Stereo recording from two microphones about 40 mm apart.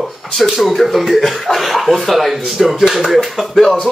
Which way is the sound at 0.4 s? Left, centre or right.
Centre.